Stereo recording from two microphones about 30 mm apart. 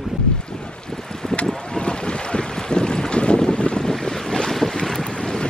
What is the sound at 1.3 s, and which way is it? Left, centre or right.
Boat, left.